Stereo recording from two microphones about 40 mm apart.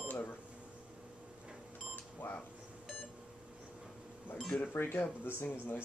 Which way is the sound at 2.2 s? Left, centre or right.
Left.